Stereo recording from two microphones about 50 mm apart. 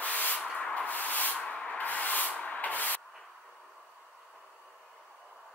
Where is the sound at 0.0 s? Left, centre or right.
Left.